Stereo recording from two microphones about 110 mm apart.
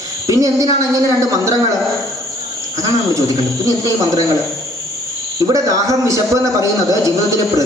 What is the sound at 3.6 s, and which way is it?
Speech, 30° right (ahead or behind).